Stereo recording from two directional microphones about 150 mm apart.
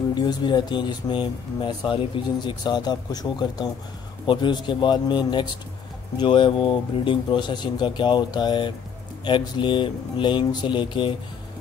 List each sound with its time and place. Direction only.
0.1 s speech: 30° left (ahead or behind)